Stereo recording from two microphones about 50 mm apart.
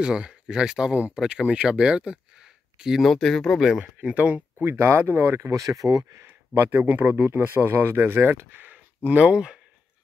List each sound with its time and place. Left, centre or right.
0.0 s speech: centre
3.1 s speech: centre
3.5 s speech: centre
3.8 s speech: right
4.7 s speech: right
5.0 s speech: right
5.4 s speech: right
6.9 s speech: right
9.2 s speech: centre